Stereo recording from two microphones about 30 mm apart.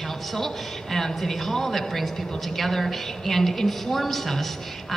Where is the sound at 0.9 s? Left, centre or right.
Centre.